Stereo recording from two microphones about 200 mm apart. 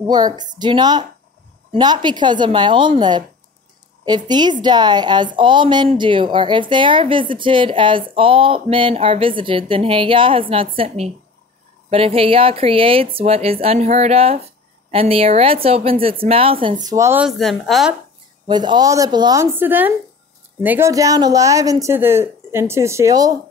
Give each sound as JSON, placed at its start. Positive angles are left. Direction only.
{"t": 0.0, "sound": "a woman's voice", "side_deg": -20}
{"t": 18.5, "sound": "a woman's voice", "side_deg": -20}